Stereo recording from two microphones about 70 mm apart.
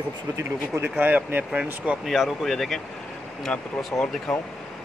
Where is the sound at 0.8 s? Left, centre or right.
Right.